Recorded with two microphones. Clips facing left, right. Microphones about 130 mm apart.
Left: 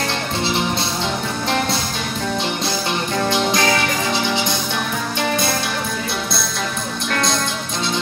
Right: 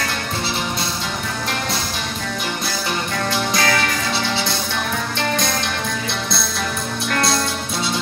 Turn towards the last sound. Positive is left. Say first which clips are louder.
# right 1 dB
turn(degrees=-5)  # may be behind; listen again after turning